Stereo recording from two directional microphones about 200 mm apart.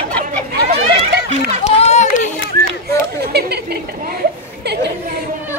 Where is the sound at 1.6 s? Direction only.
35° left (ahead or behind).